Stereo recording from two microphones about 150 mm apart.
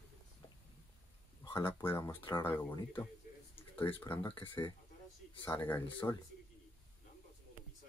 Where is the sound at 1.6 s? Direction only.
15° left (ahead or behind).